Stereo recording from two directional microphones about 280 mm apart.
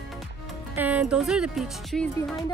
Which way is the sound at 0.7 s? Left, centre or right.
Centre.